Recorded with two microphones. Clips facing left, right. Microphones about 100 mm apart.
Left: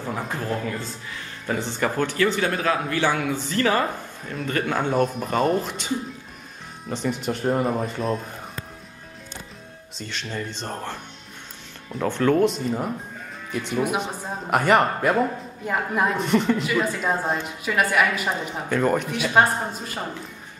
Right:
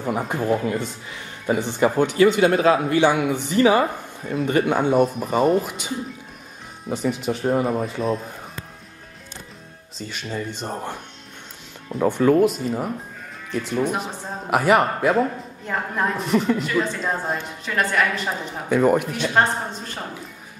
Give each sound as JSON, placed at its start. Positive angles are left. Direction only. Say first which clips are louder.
{"t": 0.0, "sound": "a man's voice", "louder": "right 5 dB", "side_deg": -15}
{"t": 5.0, "sound": "speech", "louder": "right 3 dB", "side_deg": -5}
{"t": 9.9, "sound": "a man's voice", "louder": "right 2 dB", "side_deg": -10}
{"t": 18.7, "sound": "a man's voice", "louder": "right 4 dB", "side_deg": -10}
{"t": 19.1, "sound": "speech", "louder": "left 1 dB", "side_deg": 5}